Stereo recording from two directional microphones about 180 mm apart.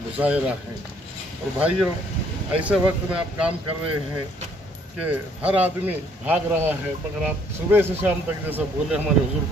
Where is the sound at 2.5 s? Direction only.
5° right (ahead or behind).